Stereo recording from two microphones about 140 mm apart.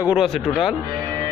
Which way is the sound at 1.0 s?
20° right (ahead or behind).